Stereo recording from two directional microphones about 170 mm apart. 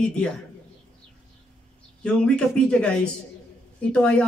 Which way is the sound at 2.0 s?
5° left (ahead or behind).